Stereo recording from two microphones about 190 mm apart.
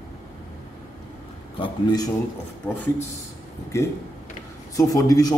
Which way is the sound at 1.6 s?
20° left (ahead or behind).